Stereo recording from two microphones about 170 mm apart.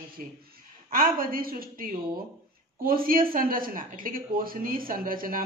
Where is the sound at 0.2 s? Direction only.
55° right (ahead or behind).